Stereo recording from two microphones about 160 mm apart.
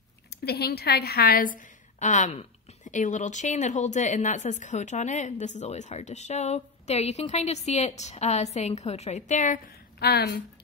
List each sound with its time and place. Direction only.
0.3 s a woman's voice: 80° left
2.0 s a woman's voice: 50° left (ahead or behind)
9.9 s a woman's voice: 80° left